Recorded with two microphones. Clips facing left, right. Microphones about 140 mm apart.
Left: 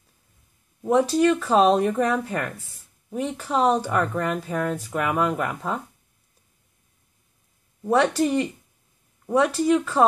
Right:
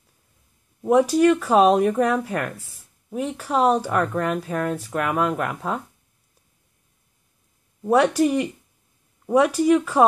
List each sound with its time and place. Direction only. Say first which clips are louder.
0.8 s speech: right 3 dB; 10° right (ahead or behind)
7.8 s speech: right 2 dB; 10° right (ahead or behind)